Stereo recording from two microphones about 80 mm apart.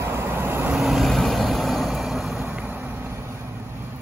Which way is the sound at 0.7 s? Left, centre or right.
Centre.